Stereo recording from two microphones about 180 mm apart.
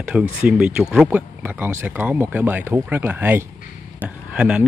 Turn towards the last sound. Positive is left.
turn(degrees=-5)  # may be behind; listen again after turning